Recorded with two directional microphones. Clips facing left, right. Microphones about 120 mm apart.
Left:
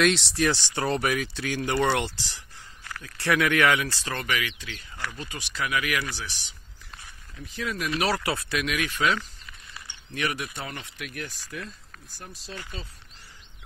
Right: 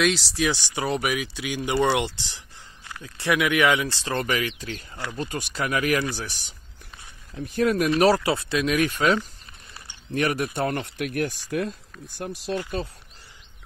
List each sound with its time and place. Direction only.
0.0 s speech: centre (ahead or behind); by 7.9 s 50° right (ahead or behind)
7.9 s speech: 35° right (ahead or behind)
8.7 s speech: 45° right (ahead or behind)